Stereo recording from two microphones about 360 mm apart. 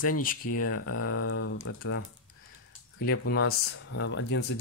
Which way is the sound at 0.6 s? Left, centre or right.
Left.